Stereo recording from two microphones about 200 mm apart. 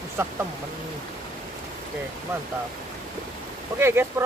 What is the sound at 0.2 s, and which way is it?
Speech, 15° right (ahead or behind).